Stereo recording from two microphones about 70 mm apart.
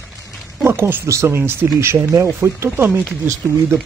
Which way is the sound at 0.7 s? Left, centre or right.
Right.